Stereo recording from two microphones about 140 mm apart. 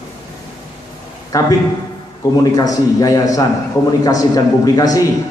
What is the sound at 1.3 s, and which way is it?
Speech, 25° left (ahead or behind).